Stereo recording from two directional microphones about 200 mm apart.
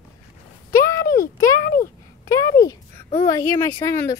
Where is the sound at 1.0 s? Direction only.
45° left (ahead or behind).